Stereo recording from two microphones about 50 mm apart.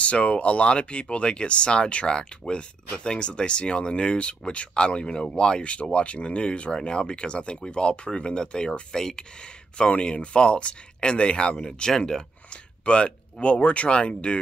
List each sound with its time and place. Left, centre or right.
0.0 s speech: left
12.8 s speech: left